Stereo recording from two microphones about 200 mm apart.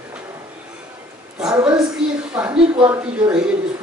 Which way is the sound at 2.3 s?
5° right (ahead or behind).